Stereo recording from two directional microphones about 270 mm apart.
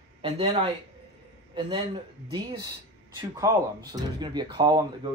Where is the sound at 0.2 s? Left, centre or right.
Right.